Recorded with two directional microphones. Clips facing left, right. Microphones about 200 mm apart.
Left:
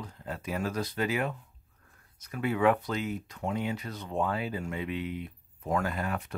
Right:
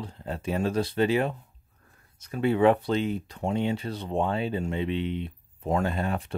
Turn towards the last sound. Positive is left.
turn(degrees=-30)  # may be behind; listen again after turning